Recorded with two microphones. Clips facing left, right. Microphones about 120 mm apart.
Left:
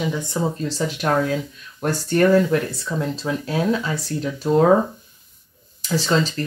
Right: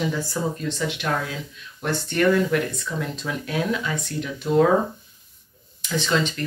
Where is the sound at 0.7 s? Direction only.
35° left (ahead or behind).